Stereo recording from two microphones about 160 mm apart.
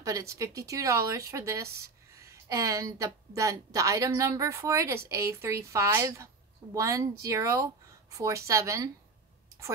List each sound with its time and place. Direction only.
0.0 s speech: 20° right (ahead or behind)